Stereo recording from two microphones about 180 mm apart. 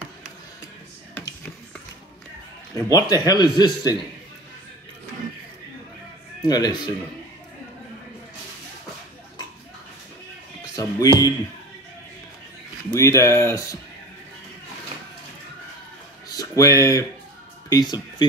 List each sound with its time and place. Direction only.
2.7 s speech: 20° left (ahead or behind)
6.4 s speech: 20° left (ahead or behind)
10.8 s speech: 20° left (ahead or behind)
12.9 s speech: 15° left (ahead or behind)
16.3 s a sound: 20° left (ahead or behind)
17.6 s speech: 20° left (ahead or behind)